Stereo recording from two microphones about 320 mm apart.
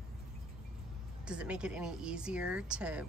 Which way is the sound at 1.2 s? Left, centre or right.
Centre.